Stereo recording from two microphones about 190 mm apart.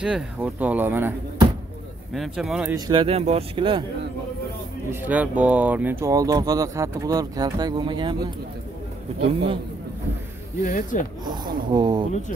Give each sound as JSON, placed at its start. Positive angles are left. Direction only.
{"t": 0.0, "sound": "speech", "side_deg": -5}
{"t": 2.1, "sound": "speech", "side_deg": 0}
{"t": 2.7, "sound": "speech", "side_deg": -25}
{"t": 5.0, "sound": "speech", "side_deg": -10}
{"t": 9.2, "sound": "a man's voice", "side_deg": -30}
{"t": 10.6, "sound": "speech", "side_deg": 40}
{"t": 11.2, "sound": "speech", "side_deg": -25}